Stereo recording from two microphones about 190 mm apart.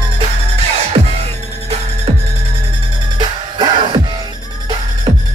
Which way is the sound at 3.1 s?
25° right (ahead or behind).